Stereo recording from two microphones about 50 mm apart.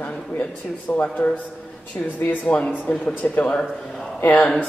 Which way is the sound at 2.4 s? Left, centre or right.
Left.